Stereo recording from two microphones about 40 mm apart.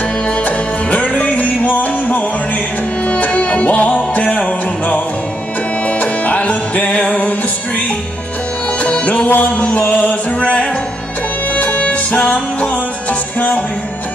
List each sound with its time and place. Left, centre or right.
0.5 s music: left
3.1 s music: left
8.8 s music: left